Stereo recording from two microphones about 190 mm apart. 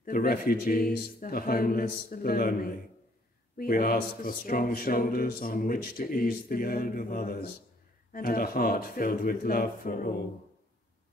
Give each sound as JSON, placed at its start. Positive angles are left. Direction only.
{"t": 0.0, "sound": "speech", "side_deg": 50}